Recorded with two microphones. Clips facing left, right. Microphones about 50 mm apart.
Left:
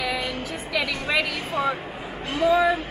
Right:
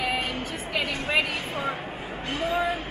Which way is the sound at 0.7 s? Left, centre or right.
Left.